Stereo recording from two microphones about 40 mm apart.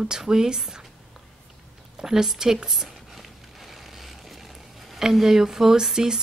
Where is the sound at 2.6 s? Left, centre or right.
Centre.